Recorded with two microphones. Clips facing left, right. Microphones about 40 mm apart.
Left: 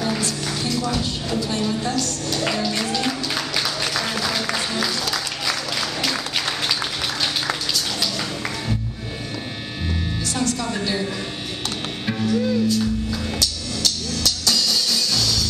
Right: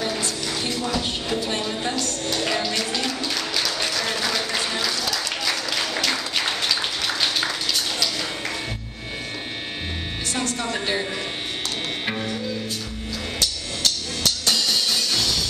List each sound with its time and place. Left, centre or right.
0.2 s music: right
3.0 s music: centre
10.3 s music: right
13.4 s music: right